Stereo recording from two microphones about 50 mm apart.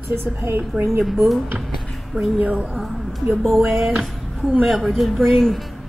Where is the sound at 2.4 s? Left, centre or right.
Right.